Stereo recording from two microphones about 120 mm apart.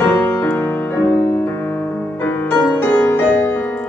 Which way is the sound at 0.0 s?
20° left (ahead or behind).